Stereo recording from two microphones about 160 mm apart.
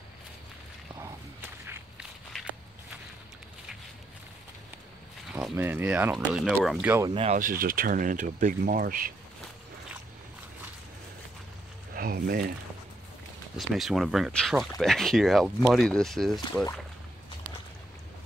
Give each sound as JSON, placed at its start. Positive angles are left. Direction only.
{"t": 1.0, "sound": "whip", "side_deg": -15}
{"t": 5.3, "sound": "speech", "side_deg": -10}
{"t": 7.3, "sound": "speech", "side_deg": -60}
{"t": 11.9, "sound": "a sound", "side_deg": -70}
{"t": 13.6, "sound": "speech", "side_deg": 0}